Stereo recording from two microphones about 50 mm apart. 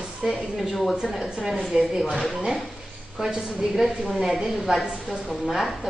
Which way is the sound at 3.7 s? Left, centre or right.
Centre.